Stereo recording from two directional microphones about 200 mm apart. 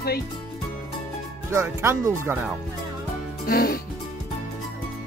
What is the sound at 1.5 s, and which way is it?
Speech, 15° right (ahead or behind).